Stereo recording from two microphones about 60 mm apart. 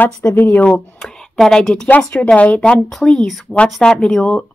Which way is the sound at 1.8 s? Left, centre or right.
Left.